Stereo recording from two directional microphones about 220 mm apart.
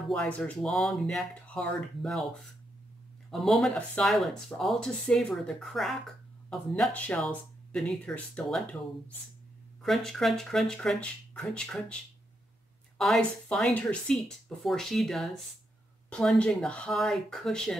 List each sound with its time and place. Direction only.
0.1 s speech: 5° left (ahead or behind)
3.3 s speech: centre (ahead or behind)
9.8 s speech: centre (ahead or behind)